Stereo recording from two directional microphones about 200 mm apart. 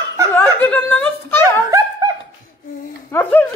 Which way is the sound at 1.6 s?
15° right (ahead or behind).